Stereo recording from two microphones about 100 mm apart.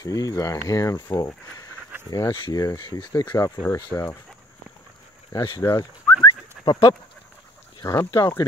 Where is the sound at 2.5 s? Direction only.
40° left (ahead or behind).